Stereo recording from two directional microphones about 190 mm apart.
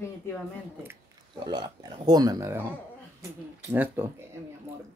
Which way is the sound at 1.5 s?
20° right (ahead or behind).